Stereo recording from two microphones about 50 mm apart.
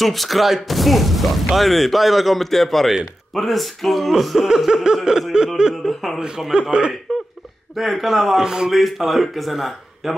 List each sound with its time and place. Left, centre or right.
0.0 s speech: centre
4.6 s a sound: centre
7.1 s laughter: centre
7.7 s speech: centre